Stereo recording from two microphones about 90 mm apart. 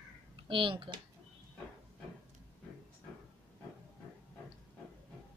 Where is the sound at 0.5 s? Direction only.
75° right (ahead or behind).